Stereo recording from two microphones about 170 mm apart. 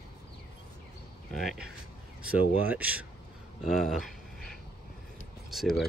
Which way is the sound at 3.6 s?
Centre (ahead or behind).